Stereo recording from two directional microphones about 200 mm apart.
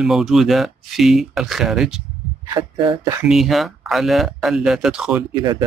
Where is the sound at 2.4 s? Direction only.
20° right (ahead or behind).